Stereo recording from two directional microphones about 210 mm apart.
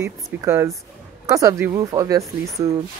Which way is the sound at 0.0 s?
15° right (ahead or behind).